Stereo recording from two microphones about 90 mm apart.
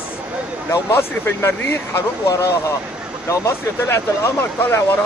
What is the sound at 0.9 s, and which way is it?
Speech, 25° left (ahead or behind).